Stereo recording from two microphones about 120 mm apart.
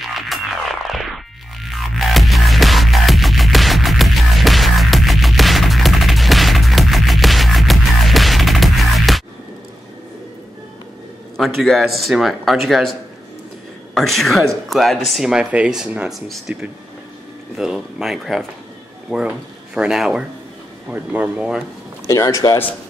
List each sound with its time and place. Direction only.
0.0 s music: centre (ahead or behind)
11.3 s speech: centre (ahead or behind)
13.9 s speech: centre (ahead or behind)
17.6 s speech: 5° right (ahead or behind)
20.9 s speech: 15° right (ahead or behind)
22.0 s speech: 30° left (ahead or behind)